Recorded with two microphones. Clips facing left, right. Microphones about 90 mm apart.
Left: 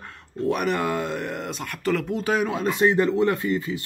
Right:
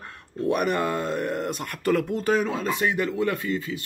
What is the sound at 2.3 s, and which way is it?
Speech, 10° left (ahead or behind).